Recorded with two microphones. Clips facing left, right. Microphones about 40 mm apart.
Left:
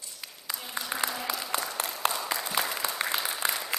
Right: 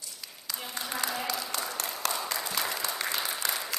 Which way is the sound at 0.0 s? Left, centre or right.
Left.